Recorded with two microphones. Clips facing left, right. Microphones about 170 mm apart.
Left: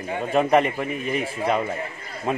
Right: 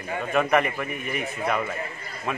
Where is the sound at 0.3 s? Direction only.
30° left (ahead or behind).